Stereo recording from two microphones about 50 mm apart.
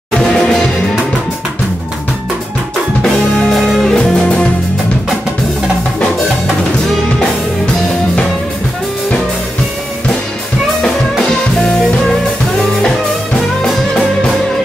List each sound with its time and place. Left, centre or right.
3.4 s music: centre
4.0 s music: centre